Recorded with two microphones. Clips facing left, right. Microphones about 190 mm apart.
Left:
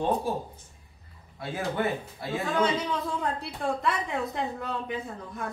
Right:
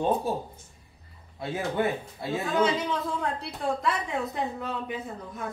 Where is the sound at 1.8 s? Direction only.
20° right (ahead or behind).